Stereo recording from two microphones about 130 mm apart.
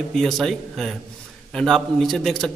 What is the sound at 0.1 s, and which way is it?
A man's voice, centre (ahead or behind).